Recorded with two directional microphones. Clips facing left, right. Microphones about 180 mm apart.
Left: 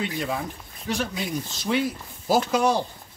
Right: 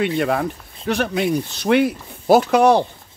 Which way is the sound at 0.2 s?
65° right (ahead or behind).